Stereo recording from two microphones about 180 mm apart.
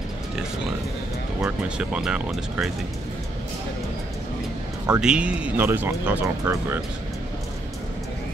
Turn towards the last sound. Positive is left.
turn(degrees=-15)  # may be behind; listen again after turning